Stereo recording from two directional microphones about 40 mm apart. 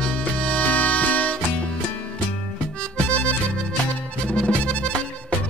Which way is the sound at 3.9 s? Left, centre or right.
Left.